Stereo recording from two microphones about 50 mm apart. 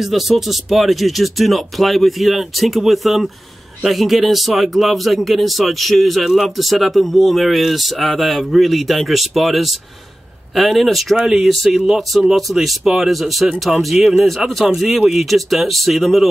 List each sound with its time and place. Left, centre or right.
0.0 s speech: centre
13.9 s speech: centre
14.2 s speech: centre